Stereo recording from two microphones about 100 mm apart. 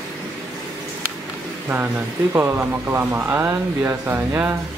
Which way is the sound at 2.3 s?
20° right (ahead or behind).